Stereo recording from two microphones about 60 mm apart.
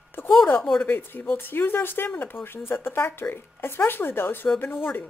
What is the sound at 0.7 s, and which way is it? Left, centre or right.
Speech, left.